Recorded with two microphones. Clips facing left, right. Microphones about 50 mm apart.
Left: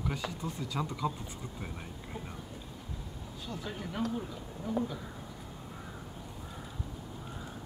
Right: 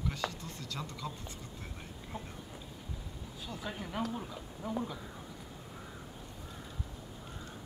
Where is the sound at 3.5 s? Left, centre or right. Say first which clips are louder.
Left 1 dB; centre.